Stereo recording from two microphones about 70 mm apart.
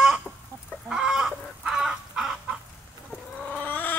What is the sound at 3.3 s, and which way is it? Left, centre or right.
Chicken, left.